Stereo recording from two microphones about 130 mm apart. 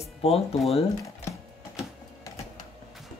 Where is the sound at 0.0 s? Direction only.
50° left (ahead or behind).